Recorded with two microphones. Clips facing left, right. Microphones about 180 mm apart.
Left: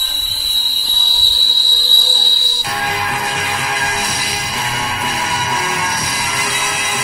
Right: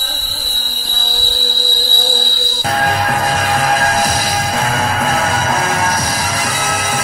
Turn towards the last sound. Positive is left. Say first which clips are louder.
# right 4 dB
turn(degrees=-45)  # may be behind; listen again after turning